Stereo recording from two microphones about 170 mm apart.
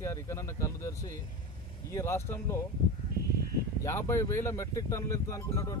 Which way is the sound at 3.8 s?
15° left (ahead or behind).